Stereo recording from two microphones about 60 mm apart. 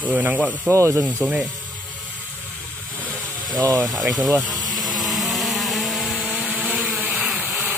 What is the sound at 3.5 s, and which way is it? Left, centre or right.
Speech, right.